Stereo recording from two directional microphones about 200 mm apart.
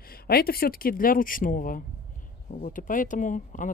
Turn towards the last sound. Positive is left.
turn(degrees=40)  # may be behind; listen again after turning